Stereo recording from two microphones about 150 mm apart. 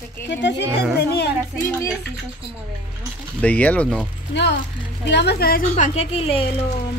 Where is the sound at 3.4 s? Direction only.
10° left (ahead or behind).